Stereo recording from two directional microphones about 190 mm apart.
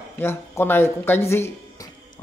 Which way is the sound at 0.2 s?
10° left (ahead or behind).